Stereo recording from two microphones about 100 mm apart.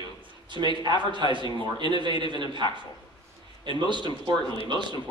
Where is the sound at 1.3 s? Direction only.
50° right (ahead or behind).